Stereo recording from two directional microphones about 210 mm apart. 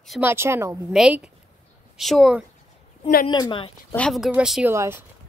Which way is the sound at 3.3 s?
20° left (ahead or behind).